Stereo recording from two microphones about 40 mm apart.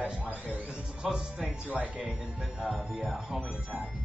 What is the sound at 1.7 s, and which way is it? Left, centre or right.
Speech, right.